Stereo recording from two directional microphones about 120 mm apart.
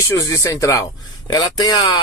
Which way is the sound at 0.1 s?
25° left (ahead or behind).